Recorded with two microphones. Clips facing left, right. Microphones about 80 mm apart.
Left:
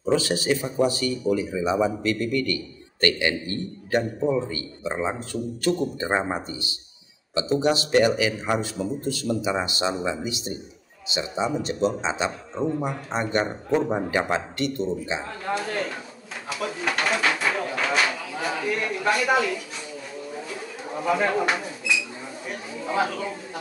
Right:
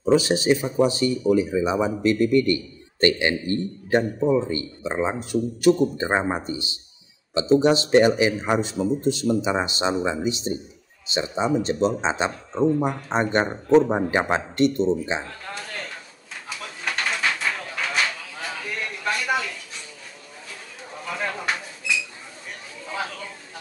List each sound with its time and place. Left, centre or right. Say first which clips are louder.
0.0 s speech: right 4 dB; centre
15.5 s speech: left 9 dB; centre
16.4 s a sound: left 5 dB; centre
20.9 s speech: left 7 dB; centre
22.5 s chatter: left 6 dB; centre